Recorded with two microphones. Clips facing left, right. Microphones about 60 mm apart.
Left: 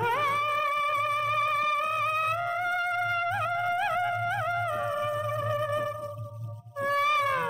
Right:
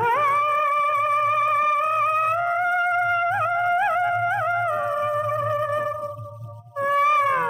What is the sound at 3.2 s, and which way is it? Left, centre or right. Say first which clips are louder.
Music: right 7 dB; right.